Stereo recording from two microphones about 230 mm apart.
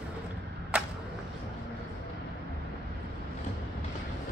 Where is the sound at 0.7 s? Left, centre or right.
Centre.